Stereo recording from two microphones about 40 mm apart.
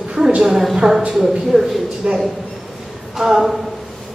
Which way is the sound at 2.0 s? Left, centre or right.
Right.